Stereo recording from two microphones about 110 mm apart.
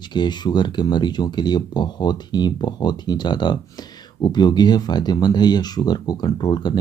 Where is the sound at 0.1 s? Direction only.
40° left (ahead or behind).